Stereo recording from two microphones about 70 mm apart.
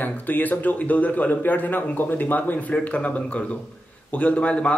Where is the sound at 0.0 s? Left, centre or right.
Left.